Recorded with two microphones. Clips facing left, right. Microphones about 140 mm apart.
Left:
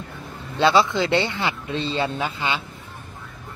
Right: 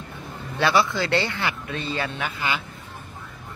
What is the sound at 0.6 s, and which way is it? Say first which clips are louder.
Speech: left 3 dB; 20° left (ahead or behind).